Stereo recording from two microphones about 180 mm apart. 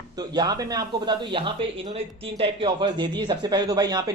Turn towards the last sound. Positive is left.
turn(degrees=-20)  # may be behind; listen again after turning